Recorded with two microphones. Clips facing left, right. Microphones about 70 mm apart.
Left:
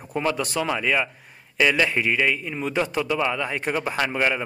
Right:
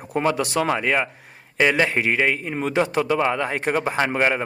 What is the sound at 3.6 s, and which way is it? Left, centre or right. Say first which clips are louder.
Speech: right 3 dB; right.